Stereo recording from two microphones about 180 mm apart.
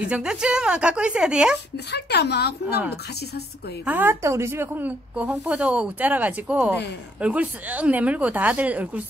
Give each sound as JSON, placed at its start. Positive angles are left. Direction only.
{"t": 0.0, "sound": "a woman's voice", "side_deg": -5}
{"t": 1.9, "sound": "speech", "side_deg": 70}
{"t": 3.8, "sound": "a woman's voice", "side_deg": -10}